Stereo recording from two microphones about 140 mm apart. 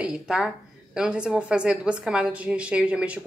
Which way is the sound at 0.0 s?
5° right (ahead or behind).